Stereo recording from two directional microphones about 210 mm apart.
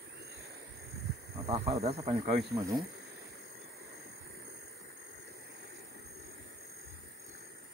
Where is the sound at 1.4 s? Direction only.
30° right (ahead or behind).